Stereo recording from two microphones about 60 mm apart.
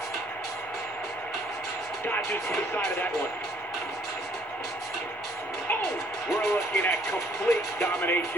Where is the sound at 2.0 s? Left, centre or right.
Left.